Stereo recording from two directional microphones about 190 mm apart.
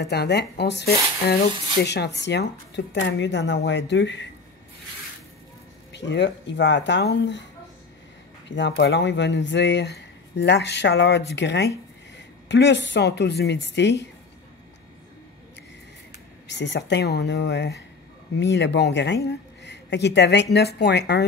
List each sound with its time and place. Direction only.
0.0 s speech: 60° left (ahead or behind)
5.9 s speech: 65° left (ahead or behind)
8.5 s speech: 70° left (ahead or behind)
16.4 s a woman's voice: 65° left (ahead or behind)